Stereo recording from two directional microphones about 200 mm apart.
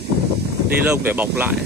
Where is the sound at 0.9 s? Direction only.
10° right (ahead or behind).